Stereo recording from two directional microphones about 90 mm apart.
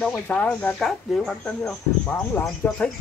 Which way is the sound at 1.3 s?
20° left (ahead or behind).